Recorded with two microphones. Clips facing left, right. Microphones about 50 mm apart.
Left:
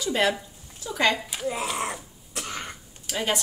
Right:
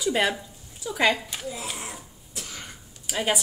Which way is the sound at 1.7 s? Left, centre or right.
Left.